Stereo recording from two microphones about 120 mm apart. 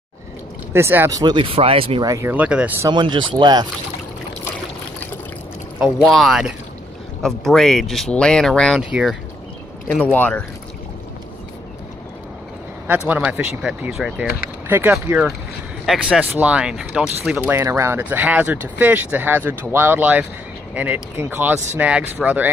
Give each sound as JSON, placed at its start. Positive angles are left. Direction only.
{"t": 0.7, "sound": "speech", "side_deg": -20}
{"t": 1.2, "sound": "speech", "side_deg": -45}
{"t": 2.0, "sound": "speech", "side_deg": -25}
{"t": 2.3, "sound": "speech", "side_deg": -10}
{"t": 2.9, "sound": "speech", "side_deg": -40}
{"t": 5.8, "sound": "speech", "side_deg": 0}
{"t": 10.1, "sound": "speech", "side_deg": 15}
{"t": 13.1, "sound": "speech", "side_deg": -10}
{"t": 14.7, "sound": "speech", "side_deg": -15}
{"t": 15.8, "sound": "speech", "side_deg": -5}
{"t": 17.5, "sound": "speech", "side_deg": -20}